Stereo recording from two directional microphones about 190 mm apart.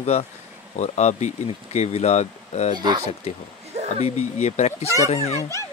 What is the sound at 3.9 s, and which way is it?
Speech, 35° left (ahead or behind).